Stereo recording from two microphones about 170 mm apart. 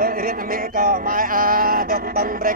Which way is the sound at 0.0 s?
55° right (ahead or behind).